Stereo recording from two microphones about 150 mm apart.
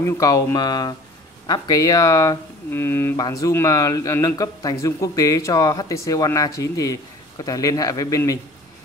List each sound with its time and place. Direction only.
0.0 s speech: 20° left (ahead or behind)